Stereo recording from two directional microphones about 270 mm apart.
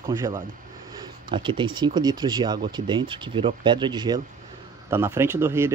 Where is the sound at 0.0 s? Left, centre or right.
Centre.